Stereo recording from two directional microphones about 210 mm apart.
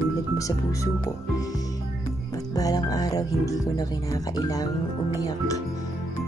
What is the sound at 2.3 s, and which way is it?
Speech, 15° left (ahead or behind).